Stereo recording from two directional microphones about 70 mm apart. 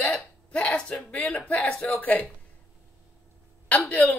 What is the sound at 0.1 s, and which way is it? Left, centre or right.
Hiccup, centre.